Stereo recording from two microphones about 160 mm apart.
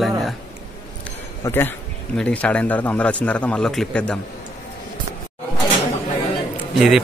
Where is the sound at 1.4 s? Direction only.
15° left (ahead or behind).